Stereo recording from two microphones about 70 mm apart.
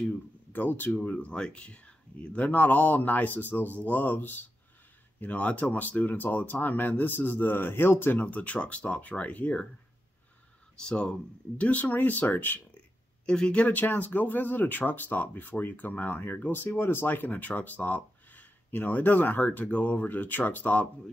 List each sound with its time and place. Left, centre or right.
0.5 s speech: left
10.8 s speech: centre
13.2 s speech: centre